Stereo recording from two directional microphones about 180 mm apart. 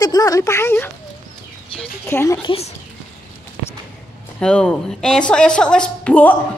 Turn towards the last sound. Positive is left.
turn(degrees=10)  # may be behind; listen again after turning